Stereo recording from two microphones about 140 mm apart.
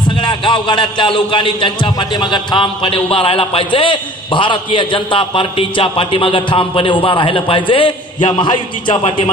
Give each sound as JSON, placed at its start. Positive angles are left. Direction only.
{"t": 0.2, "sound": "a man's voice", "side_deg": 35}